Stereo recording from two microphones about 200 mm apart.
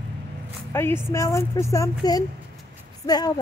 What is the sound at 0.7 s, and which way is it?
A woman's voice, 10° left (ahead or behind).